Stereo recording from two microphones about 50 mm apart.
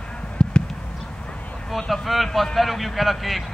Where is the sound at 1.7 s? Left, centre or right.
Centre.